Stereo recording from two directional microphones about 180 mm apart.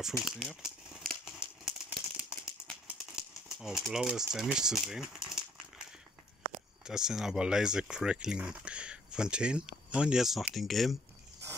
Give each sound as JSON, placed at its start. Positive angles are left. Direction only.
{"t": 0.0, "sound": "crumpling", "side_deg": 0}
{"t": 2.9, "sound": "typewriter", "side_deg": -5}
{"t": 6.8, "sound": "speech", "side_deg": -5}